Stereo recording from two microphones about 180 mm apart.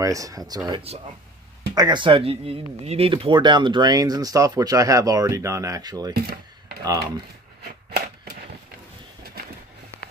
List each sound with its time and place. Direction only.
0.0 s speech: 20° right (ahead or behind)
6.1 s speech: 55° right (ahead or behind)
6.8 s speech: 20° right (ahead or behind)